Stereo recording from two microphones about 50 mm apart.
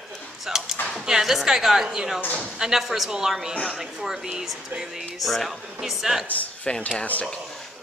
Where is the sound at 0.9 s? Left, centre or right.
Centre.